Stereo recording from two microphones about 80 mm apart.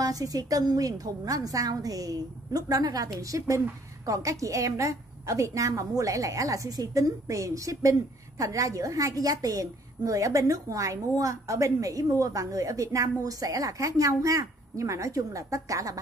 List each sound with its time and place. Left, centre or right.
0.0 s a woman's voice: right